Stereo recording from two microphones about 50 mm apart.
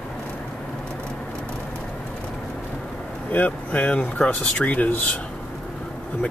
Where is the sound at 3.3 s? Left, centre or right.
Left.